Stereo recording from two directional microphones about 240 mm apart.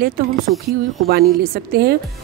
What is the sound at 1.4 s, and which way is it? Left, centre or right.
Speech, right.